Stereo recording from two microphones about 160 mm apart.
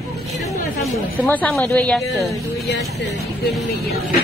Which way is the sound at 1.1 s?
10° left (ahead or behind).